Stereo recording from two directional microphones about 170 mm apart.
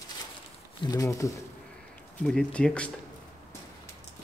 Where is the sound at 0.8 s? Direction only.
20° left (ahead or behind).